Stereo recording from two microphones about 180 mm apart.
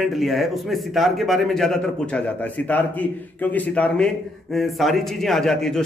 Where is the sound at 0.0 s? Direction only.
Centre (ahead or behind).